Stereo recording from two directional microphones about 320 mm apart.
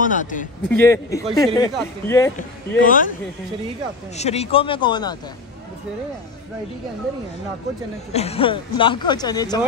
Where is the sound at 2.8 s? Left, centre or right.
Left.